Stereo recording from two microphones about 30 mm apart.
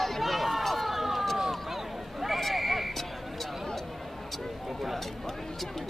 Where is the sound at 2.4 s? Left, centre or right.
Centre.